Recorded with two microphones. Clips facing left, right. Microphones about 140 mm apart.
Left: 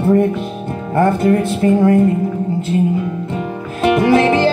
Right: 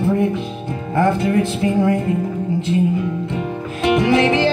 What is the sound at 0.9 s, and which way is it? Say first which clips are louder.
Music: left 3 dB; 45° left (ahead or behind).